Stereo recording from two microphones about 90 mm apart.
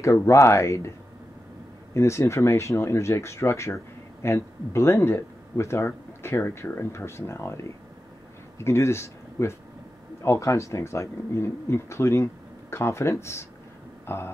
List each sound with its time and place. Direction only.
0.0 s speech: 35° left (ahead or behind)
2.0 s speech: 30° left (ahead or behind)
14.0 s a sound: 25° left (ahead or behind)